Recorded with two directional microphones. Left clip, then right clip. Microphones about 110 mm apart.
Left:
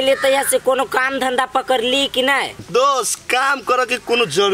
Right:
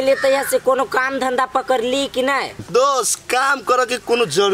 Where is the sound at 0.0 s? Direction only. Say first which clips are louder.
Even; centre (ahead or behind).